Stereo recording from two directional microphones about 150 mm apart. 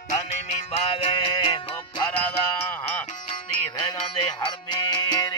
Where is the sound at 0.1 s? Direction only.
45° left (ahead or behind).